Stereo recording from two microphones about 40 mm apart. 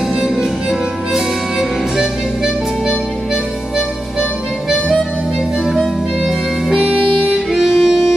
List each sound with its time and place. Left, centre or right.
0.1 s music: centre
5.7 s music: centre
6.8 s music: right